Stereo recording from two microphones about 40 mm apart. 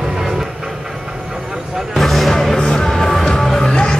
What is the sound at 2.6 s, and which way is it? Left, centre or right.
Music, left.